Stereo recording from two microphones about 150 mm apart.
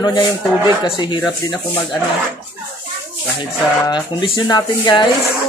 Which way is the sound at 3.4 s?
30° left (ahead or behind).